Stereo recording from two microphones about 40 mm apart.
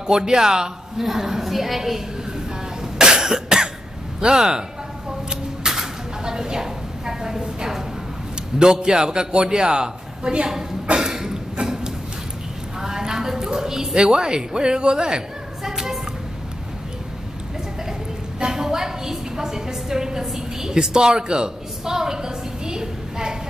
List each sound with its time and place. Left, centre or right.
0.0 s a man's voice: centre
3.0 s cough: centre
4.2 s a man's voice: centre
5.3 s a sound: centre
8.5 s a man's voice: centre
11.5 s a sound: centre
18.4 s a woman's voice: centre